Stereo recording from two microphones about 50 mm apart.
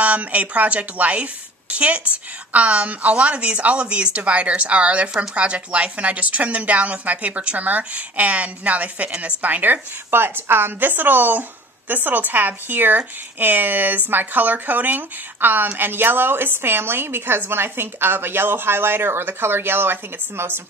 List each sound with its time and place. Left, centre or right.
0.0 s a woman's voice: right
10.1 s a woman's voice: right